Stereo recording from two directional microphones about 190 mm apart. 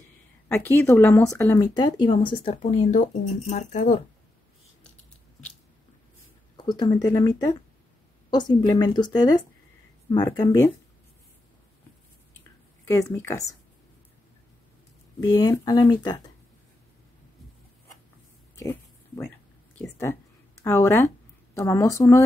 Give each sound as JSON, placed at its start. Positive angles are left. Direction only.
{"t": 0.5, "sound": "speech", "side_deg": 10}
{"t": 6.5, "sound": "speech", "side_deg": 25}
{"t": 12.8, "sound": "speech", "side_deg": 10}
{"t": 15.1, "sound": "speech", "side_deg": 20}
{"t": 18.6, "sound": "a sound", "side_deg": 10}
{"t": 19.8, "sound": "speech", "side_deg": 10}